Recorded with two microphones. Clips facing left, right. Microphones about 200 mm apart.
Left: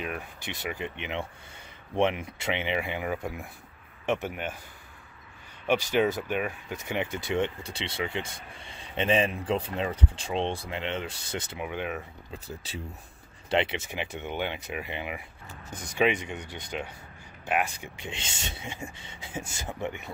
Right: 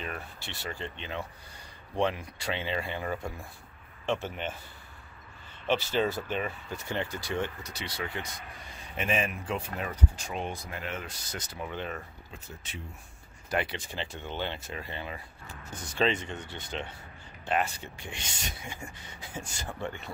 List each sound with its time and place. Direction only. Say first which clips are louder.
0.4 s speech: left 4 dB; 15° left (ahead or behind)
5.7 s speech: left 3 dB; 15° left (ahead or behind)
11.6 s speech: left 2 dB; 10° left (ahead or behind)
12.4 s speech: left 6 dB; 35° left (ahead or behind)
13.5 s speech: left 5 dB; 25° left (ahead or behind)